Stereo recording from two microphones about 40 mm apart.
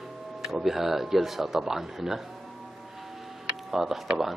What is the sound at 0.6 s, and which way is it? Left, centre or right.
A man's voice, centre.